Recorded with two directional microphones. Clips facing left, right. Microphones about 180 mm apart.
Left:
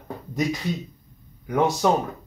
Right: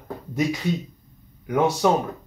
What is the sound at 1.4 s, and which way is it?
Speech, 5° right (ahead or behind).